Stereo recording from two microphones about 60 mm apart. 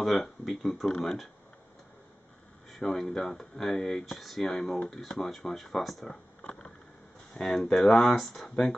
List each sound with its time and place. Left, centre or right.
0.0 s speech: centre
2.8 s speech: centre
6.4 s a sound: left
7.3 s speech: centre